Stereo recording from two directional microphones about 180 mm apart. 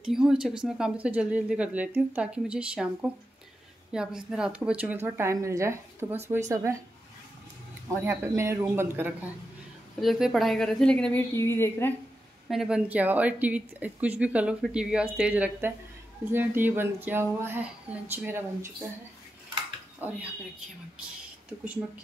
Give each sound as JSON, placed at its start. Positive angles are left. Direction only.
{"t": 0.0, "sound": "a woman's voice", "side_deg": -5}
{"t": 7.9, "sound": "a woman's voice", "side_deg": -15}
{"t": 9.9, "sound": "speech", "side_deg": 0}
{"t": 12.4, "sound": "a woman's voice", "side_deg": -5}
{"t": 20.0, "sound": "a woman's voice", "side_deg": -10}